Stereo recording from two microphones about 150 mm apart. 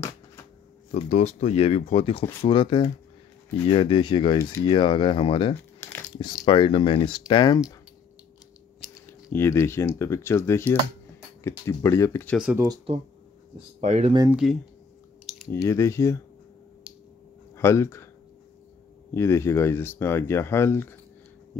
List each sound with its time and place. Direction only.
0.9 s speech: 50° left (ahead or behind)
5.8 s crumpling: 15° left (ahead or behind)
6.1 s speech: 30° left (ahead or behind)
9.0 s a sound: 15° left (ahead or behind)
9.9 s speech: 20° left (ahead or behind)
12.4 s speech: 10° right (ahead or behind)
13.7 s speech: 50° right (ahead or behind)
14.3 s speech: centre (ahead or behind)
15.5 s speech: 20° left (ahead or behind)
17.6 s speech: 20° left (ahead or behind)
19.1 s speech: 20° left (ahead or behind)